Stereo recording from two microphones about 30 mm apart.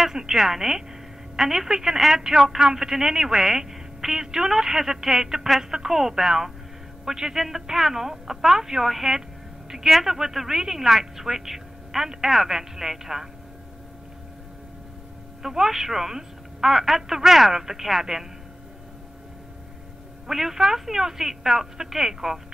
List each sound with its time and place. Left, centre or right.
0.1 s a woman's voice: centre
15.4 s speech: centre
20.2 s speech: centre